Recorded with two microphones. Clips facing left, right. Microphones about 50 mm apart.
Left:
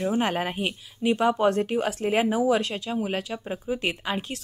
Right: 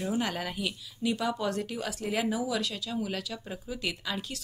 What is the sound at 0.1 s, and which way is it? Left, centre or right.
A woman's voice, left.